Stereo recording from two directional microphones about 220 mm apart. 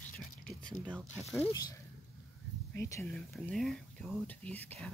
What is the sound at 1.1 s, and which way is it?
Speech, 5° left (ahead or behind).